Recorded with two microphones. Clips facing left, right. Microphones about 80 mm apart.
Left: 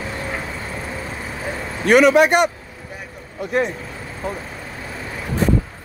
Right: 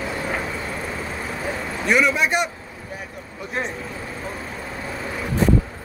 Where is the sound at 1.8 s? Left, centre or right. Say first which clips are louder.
Left 7 dB; left.